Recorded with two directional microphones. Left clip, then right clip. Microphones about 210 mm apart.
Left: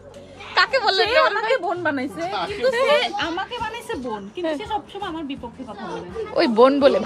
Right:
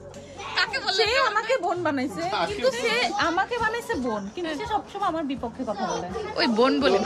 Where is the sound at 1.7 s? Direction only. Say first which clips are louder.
Left 2 dB; 30° left (ahead or behind).